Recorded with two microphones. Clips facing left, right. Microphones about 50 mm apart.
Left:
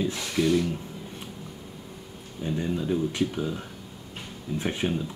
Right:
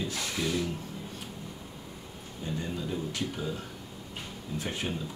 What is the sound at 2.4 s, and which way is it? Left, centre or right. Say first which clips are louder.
Speech: left 7 dB; left.